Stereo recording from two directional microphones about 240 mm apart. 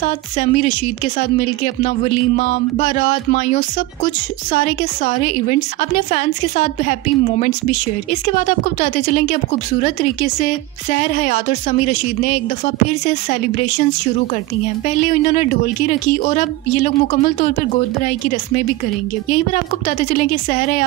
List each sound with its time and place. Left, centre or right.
0.0 s speech: left
14.9 s speech: left